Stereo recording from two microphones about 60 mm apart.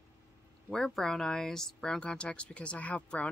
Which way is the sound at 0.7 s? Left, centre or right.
Centre.